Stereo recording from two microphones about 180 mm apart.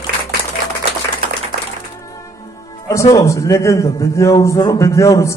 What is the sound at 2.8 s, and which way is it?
A man's voice, 15° left (ahead or behind).